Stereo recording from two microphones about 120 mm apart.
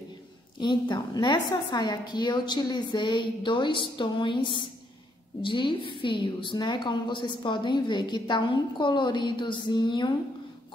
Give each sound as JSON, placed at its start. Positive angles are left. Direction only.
{"t": 0.6, "sound": "a woman's voice", "side_deg": 40}